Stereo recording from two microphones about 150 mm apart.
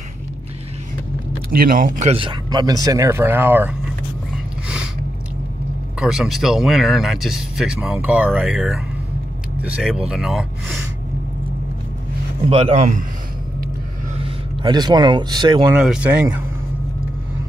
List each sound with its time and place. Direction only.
1.5 s speech: 70° right (ahead or behind)
2.1 s speech: 30° right (ahead or behind); by 3.7 s 15° right (ahead or behind)
5.9 s speech: 5° right (ahead or behind)
12.4 s speech: 40° right (ahead or behind)
14.6 s speech: 30° right (ahead or behind)
15.8 s speech: 5° right (ahead or behind)